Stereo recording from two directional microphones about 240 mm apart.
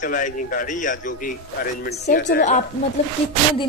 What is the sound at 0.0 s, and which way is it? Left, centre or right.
A man's voice, left.